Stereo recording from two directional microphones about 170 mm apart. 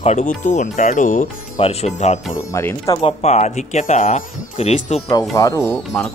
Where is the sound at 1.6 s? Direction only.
35° left (ahead or behind).